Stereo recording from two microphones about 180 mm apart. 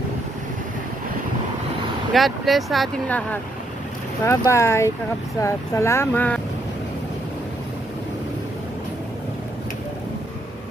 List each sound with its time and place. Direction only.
2.1 s speech: centre (ahead or behind)